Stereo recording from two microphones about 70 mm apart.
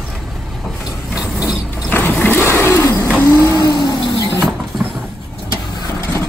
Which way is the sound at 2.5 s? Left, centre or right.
Left.